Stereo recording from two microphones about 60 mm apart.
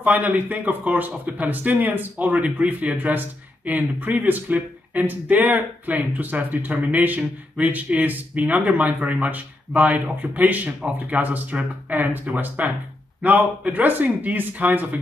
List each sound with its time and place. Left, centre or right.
0.0 s a man's voice: right